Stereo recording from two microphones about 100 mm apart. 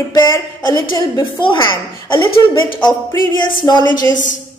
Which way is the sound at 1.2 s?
55° left (ahead or behind).